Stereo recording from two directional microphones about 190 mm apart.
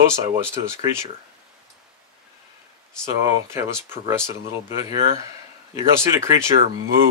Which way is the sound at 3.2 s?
15° right (ahead or behind).